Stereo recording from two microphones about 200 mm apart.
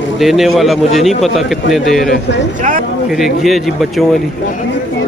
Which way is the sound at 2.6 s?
45° right (ahead or behind).